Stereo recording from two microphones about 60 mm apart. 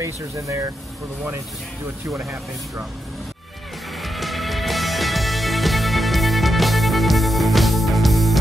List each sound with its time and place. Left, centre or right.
0.0 s speech: right
4.0 s music: centre